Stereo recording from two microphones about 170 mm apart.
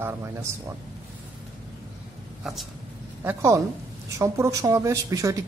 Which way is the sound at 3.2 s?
15° right (ahead or behind).